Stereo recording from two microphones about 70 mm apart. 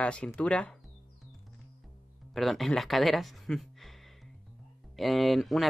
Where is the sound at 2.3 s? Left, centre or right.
Centre.